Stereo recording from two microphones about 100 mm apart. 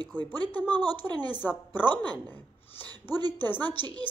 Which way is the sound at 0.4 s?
45° right (ahead or behind).